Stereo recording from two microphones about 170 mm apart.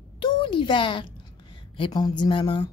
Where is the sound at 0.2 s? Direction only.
30° left (ahead or behind).